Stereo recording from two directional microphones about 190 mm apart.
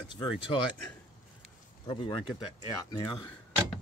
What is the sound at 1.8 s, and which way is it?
Speech, 25° left (ahead or behind).